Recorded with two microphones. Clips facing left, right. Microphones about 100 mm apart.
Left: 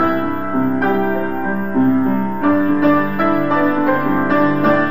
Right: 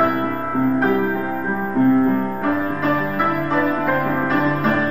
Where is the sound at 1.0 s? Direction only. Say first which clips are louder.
Left 3 dB; 60° left (ahead or behind).